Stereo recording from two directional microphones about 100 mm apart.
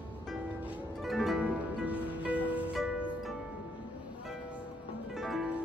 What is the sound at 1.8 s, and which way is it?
Music, 15° right (ahead or behind).